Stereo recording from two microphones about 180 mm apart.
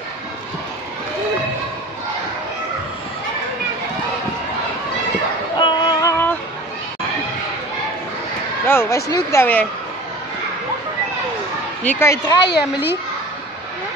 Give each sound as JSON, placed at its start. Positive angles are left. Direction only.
{"t": 5.6, "sound": "music", "side_deg": 25}
{"t": 8.6, "sound": "a sound", "side_deg": 15}
{"t": 9.1, "sound": "speech", "side_deg": 15}
{"t": 11.8, "sound": "speech", "side_deg": 10}